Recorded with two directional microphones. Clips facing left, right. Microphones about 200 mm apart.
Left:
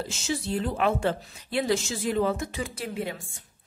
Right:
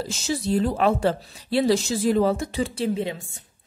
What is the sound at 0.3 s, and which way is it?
Speech, 35° right (ahead or behind).